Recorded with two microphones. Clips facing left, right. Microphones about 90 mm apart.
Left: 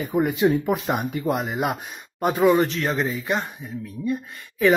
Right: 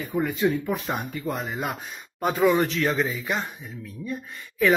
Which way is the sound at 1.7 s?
5° left (ahead or behind).